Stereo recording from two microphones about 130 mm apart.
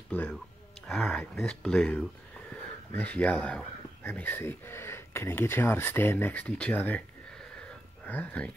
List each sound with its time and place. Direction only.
0.1 s speech: 10° left (ahead or behind)